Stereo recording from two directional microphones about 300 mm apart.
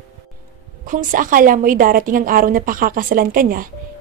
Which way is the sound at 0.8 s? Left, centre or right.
Right.